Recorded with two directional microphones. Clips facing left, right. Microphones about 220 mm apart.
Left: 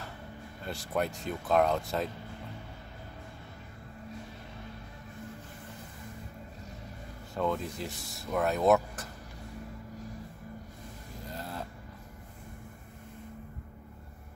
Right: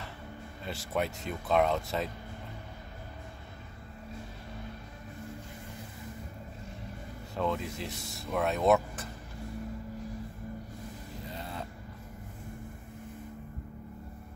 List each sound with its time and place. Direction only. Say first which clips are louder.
0.7 s speech: left 1 dB; centre (ahead or behind)
7.3 s speech: left 1 dB; centre (ahead or behind)
11.2 s vehicle: left 1 dB; centre (ahead or behind)